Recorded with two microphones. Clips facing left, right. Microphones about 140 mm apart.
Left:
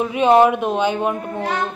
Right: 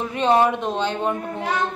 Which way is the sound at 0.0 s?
10° left (ahead or behind).